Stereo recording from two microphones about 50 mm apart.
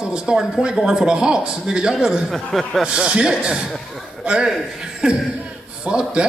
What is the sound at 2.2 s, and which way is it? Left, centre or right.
Speech, centre.